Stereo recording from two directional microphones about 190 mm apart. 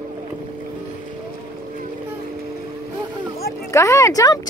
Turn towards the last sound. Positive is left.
turn(degrees=20)  # may be behind; listen again after turning